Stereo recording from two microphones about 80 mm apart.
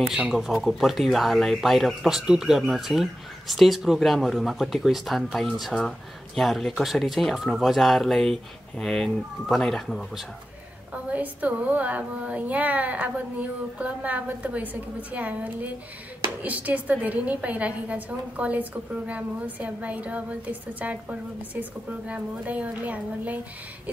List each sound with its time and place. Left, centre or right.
0.3 s speech: centre
10.9 s a woman's voice: centre